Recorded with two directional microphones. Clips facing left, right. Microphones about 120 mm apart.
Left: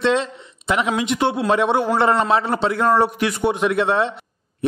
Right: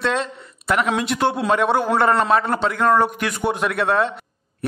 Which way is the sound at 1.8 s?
25° left (ahead or behind).